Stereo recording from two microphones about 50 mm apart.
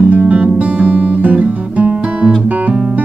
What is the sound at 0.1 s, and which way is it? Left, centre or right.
Guitar, right.